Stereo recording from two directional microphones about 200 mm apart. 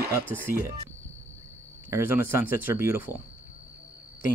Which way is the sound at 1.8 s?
10° right (ahead or behind).